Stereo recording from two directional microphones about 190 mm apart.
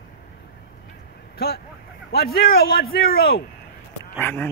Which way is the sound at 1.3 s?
55° left (ahead or behind).